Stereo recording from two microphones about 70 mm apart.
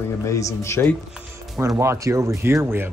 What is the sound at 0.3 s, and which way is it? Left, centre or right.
Speech, left.